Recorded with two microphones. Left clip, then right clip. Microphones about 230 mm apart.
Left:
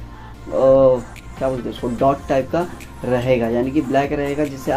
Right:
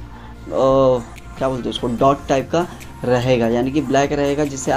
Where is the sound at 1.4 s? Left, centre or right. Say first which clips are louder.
Right 1 dB; right.